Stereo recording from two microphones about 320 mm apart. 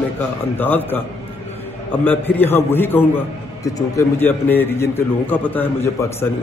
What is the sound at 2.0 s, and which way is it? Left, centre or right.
A man's voice, centre.